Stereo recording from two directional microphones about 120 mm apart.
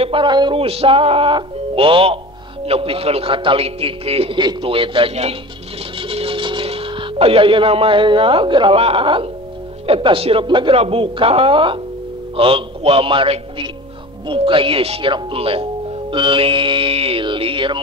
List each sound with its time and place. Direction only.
0.0 s speech: 45° right (ahead or behind)
4.4 s speech: 40° right (ahead or behind)